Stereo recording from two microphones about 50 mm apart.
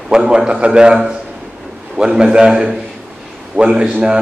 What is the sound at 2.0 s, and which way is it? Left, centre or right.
A man's voice, centre.